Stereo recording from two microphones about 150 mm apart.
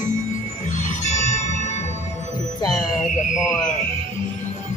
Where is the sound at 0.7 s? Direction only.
55° left (ahead or behind).